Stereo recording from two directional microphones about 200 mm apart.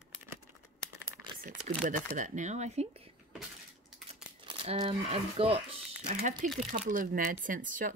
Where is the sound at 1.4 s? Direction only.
45° right (ahead or behind).